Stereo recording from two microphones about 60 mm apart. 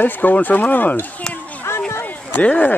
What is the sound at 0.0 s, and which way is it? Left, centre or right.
Speech, left.